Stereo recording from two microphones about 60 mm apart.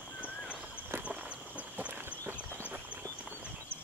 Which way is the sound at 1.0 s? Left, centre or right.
Right.